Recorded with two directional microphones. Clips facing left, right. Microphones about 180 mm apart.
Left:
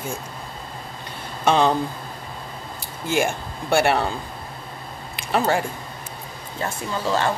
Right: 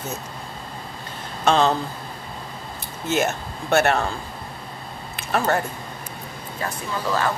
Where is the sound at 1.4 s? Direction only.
10° left (ahead or behind).